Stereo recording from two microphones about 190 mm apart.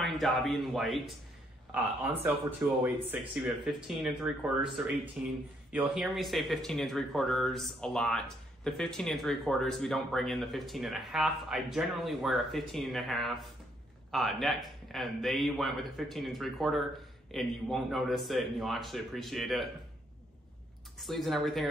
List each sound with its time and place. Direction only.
0.0 s speech: centre (ahead or behind)
21.0 s speech: centre (ahead or behind)